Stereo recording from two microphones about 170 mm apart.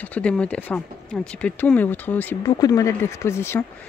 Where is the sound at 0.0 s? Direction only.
5° left (ahead or behind).